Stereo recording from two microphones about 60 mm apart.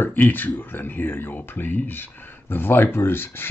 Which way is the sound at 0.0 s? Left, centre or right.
Left.